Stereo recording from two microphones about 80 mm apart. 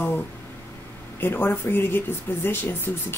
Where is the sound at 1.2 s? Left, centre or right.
Left.